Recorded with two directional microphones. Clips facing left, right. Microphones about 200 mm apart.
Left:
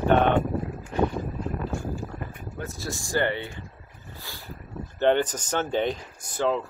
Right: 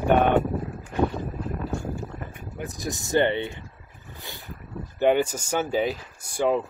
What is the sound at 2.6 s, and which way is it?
Speech, 15° right (ahead or behind).